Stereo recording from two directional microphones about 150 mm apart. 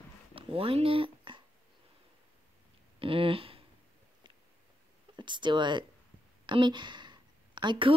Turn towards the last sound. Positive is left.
turn(degrees=-35)  # may be behind; listen again after turning